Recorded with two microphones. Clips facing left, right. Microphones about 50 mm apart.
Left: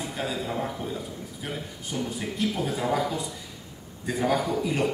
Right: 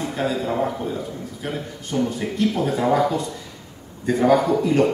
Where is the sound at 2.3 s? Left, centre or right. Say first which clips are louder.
Right 6 dB; centre.